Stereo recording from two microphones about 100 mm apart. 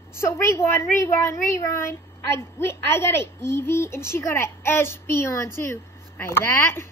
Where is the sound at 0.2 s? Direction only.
25° left (ahead or behind).